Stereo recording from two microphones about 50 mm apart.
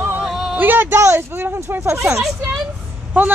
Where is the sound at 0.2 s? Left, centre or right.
Centre.